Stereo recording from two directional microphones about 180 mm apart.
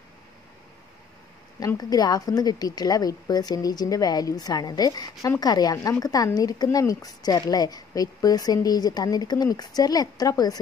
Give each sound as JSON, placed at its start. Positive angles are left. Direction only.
{"t": 1.6, "sound": "speech", "side_deg": 20}